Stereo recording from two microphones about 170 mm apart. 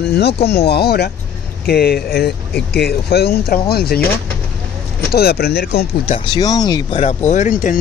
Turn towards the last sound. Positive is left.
turn(degrees=50)  # may be behind; listen again after turning